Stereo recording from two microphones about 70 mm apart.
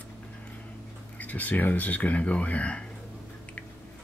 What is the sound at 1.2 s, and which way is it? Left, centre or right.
Speech, left.